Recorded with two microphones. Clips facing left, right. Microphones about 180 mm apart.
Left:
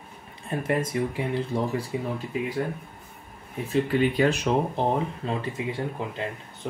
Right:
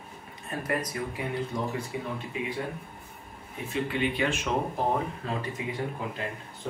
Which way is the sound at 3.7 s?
40° left (ahead or behind).